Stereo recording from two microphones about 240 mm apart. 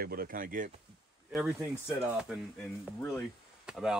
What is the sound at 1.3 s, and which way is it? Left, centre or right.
Speech, centre.